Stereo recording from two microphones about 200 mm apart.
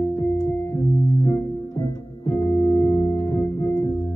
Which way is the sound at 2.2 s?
15° left (ahead or behind).